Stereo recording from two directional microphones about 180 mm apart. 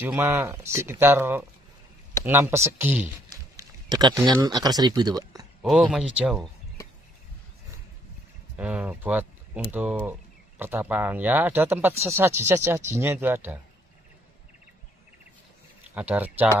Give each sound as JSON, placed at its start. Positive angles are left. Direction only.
{"t": 0.0, "sound": "speech", "side_deg": -10}
{"t": 3.5, "sound": "a sound", "side_deg": -20}
{"t": 4.3, "sound": "speech", "side_deg": -20}
{"t": 5.6, "sound": "speech", "side_deg": -5}
{"t": 8.5, "sound": "speech", "side_deg": -5}
{"t": 15.9, "sound": "speech", "side_deg": -10}